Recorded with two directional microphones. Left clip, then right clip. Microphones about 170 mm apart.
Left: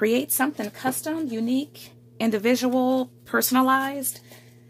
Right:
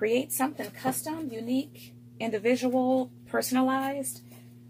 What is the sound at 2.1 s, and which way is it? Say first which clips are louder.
Speech: left 4 dB; 60° left (ahead or behind).